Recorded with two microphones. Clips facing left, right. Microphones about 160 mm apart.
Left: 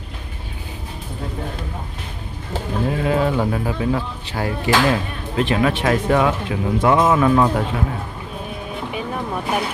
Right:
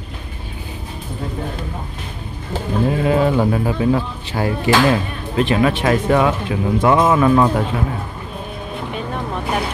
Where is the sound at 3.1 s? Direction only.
20° right (ahead or behind).